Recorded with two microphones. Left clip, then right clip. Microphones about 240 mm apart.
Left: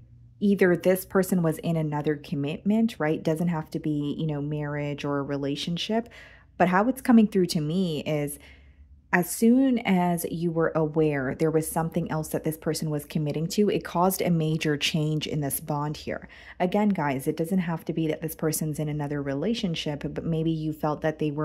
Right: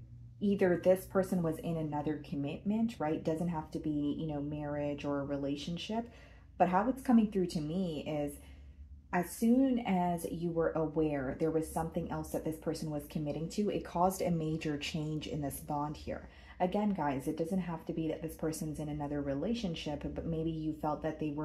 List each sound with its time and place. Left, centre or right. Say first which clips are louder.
0.4 s speech: left 8 dB; left